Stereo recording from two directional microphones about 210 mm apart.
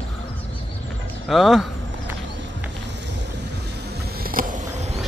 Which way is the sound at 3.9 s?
45° right (ahead or behind).